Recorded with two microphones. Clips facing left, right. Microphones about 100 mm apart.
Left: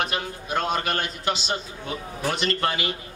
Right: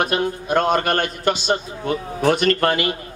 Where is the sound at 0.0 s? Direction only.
50° right (ahead or behind).